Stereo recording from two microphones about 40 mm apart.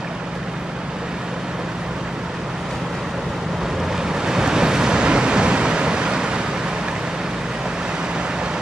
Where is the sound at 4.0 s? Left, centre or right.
Centre.